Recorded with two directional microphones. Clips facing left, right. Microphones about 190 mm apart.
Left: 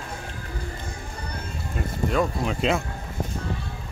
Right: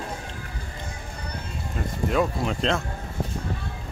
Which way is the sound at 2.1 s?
Centre (ahead or behind).